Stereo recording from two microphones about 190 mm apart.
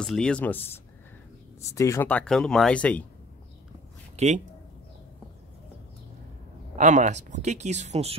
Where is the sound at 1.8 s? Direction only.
15° left (ahead or behind).